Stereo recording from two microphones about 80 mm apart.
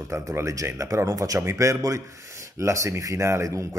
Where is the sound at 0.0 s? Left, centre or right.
Right.